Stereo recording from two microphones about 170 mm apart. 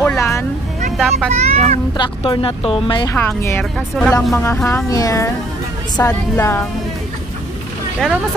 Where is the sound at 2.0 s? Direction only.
30° left (ahead or behind).